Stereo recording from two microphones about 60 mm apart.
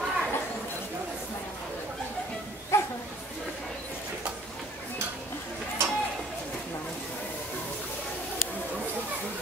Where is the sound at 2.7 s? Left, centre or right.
Left.